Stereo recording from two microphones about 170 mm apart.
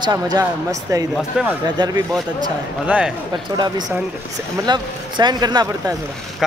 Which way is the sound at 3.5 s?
25° right (ahead or behind).